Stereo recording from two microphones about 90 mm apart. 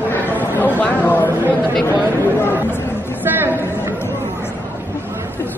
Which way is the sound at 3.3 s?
25° right (ahead or behind).